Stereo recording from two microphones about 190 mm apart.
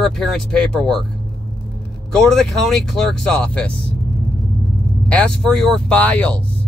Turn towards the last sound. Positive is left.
turn(degrees=5)  # may be behind; listen again after turning